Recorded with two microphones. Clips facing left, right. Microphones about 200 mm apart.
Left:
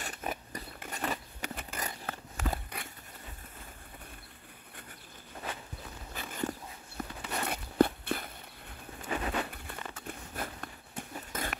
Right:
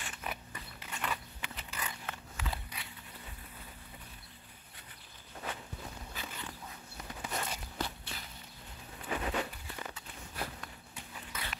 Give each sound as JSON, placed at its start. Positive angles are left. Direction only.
{"t": 0.0, "sound": "biting", "side_deg": 40}
{"t": 6.1, "sound": "dog", "side_deg": 45}
{"t": 7.0, "sound": "walk", "side_deg": 60}
{"t": 9.0, "sound": "a sound", "side_deg": 50}